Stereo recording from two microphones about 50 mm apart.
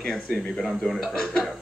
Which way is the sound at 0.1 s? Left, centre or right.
Centre.